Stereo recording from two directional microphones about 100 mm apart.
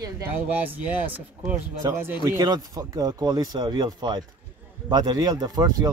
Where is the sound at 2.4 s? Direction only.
40° right (ahead or behind).